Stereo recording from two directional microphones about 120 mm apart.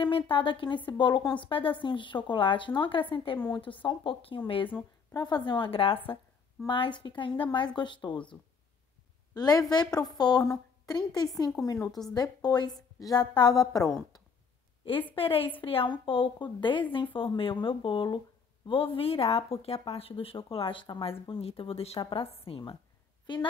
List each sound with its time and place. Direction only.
0.0 s speech: 45° left (ahead or behind)
5.1 s a woman's voice: 35° left (ahead or behind)
5.7 s a woman's voice: 50° left (ahead or behind)
9.3 s a woman's voice: 30° left (ahead or behind)
15.1 s a woman's voice: 50° left (ahead or behind)